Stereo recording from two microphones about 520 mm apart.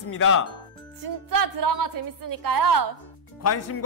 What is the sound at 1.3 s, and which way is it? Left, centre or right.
A woman's voice, right.